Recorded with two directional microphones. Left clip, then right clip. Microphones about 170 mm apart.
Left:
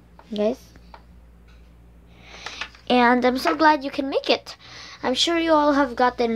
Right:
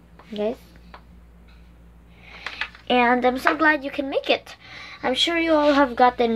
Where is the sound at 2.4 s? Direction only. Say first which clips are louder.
Right 3 dB; 30° left (ahead or behind).